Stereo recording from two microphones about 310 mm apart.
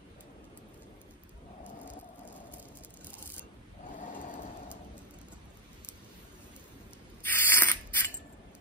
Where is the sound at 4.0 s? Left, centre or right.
Left.